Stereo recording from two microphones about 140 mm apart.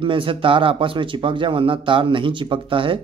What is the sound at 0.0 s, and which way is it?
A man's voice, 40° right (ahead or behind).